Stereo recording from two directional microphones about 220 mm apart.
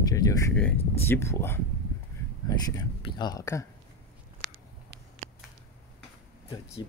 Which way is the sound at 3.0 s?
20° left (ahead or behind).